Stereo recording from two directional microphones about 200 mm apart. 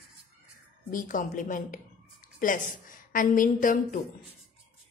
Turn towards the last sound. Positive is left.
turn(degrees=40)  # may be behind; listen again after turning